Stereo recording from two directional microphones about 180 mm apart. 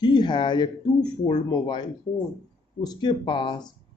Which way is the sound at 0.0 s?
25° left (ahead or behind).